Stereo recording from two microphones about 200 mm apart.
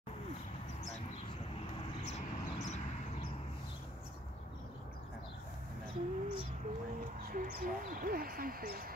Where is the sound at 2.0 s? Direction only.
35° left (ahead or behind).